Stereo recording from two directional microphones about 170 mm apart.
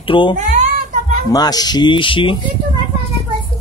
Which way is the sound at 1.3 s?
20° left (ahead or behind).